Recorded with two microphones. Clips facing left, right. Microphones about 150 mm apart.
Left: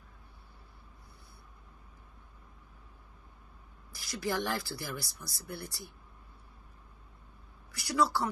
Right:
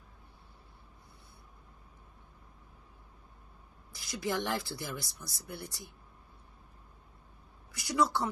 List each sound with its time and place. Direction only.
3.9 s speech: 20° right (ahead or behind)
7.7 s a woman's voice: 20° right (ahead or behind)